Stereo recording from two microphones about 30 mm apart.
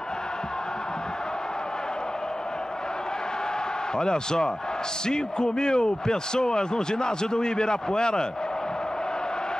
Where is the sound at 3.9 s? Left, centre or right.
Left.